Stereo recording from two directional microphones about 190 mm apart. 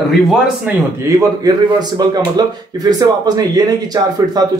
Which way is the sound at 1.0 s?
20° right (ahead or behind).